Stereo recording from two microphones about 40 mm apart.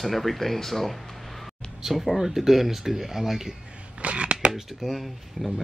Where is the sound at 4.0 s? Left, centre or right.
Right.